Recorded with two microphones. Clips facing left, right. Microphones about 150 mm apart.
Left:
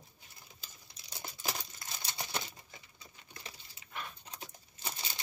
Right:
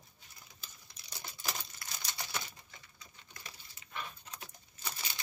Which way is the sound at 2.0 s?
25° left (ahead or behind).